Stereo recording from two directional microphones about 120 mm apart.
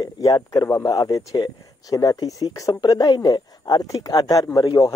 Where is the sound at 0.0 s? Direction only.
35° left (ahead or behind).